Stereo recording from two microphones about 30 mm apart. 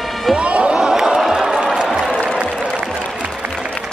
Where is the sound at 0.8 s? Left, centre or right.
Right.